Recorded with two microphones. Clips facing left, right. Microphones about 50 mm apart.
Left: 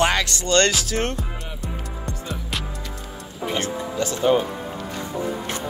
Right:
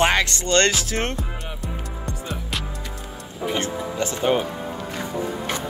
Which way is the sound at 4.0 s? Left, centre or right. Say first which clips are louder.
Left 2 dB; right.